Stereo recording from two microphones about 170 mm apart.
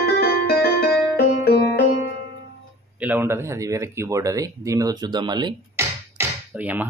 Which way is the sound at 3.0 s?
10° right (ahead or behind).